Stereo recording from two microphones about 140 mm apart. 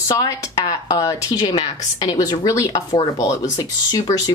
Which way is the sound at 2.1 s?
30° left (ahead or behind).